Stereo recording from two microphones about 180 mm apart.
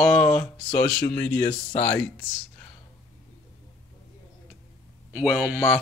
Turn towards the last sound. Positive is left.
turn(degrees=0)  # may be behind; listen again after turning